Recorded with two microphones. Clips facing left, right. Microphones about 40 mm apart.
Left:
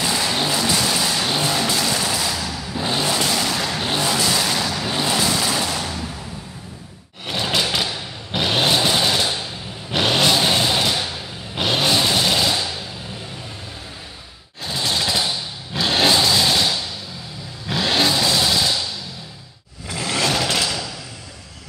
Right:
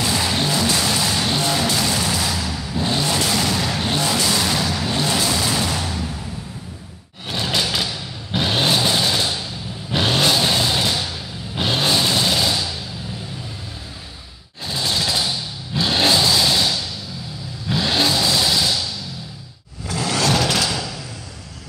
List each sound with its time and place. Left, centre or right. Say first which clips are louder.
0.0 s music: even; centre
7.2 s a sound: left 1 dB; centre
7.6 s thump: left 1 dB; left
8.4 s vehicle: even; centre
14.6 s vehicle: even; left
16.5 s a sound: even; centre
17.6 s vehicle: even; centre
18.7 s music: even; left
19.9 s vehicle: right 2 dB; centre
20.5 s a sound: right 1 dB; centre